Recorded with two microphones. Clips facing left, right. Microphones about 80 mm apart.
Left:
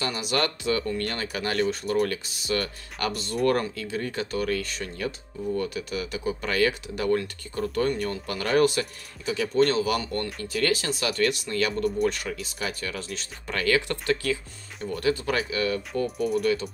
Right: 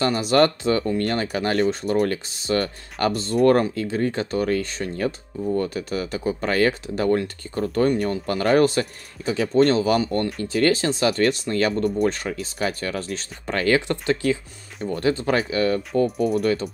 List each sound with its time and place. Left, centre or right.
0.0 s speech: right